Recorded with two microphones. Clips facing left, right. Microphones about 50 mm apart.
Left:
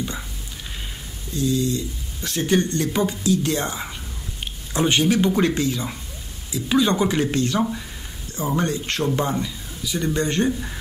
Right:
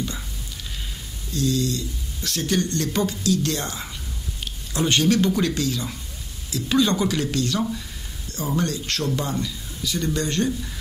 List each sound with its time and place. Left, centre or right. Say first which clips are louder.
1.3 s speech: left 1 dB; centre